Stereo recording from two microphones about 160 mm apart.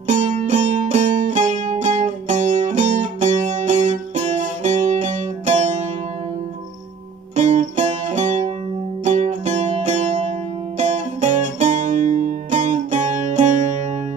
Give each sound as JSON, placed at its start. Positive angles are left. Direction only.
{"t": 0.0, "sound": "music", "side_deg": -50}
{"t": 7.3, "sound": "music", "side_deg": -50}